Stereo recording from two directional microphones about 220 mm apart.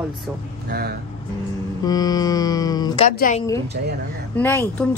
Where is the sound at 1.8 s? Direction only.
15° left (ahead or behind).